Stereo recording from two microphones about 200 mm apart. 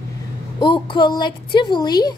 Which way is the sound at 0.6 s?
25° left (ahead or behind).